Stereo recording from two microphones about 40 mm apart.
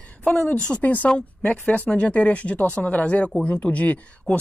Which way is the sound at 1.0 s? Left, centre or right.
Left.